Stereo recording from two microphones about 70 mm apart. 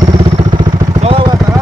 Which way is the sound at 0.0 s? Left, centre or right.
Right.